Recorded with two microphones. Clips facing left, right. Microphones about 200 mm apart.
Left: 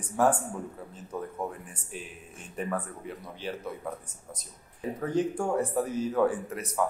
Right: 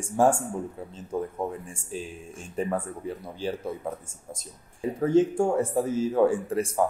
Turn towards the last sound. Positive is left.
turn(degrees=-30)  # may be behind; listen again after turning